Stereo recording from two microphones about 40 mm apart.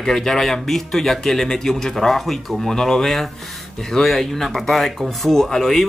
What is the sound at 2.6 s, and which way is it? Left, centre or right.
Speech, centre.